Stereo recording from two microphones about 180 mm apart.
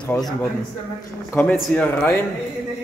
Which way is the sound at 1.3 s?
10° left (ahead or behind).